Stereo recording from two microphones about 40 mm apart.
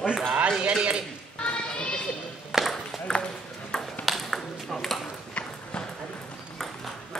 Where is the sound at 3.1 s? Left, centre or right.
Centre.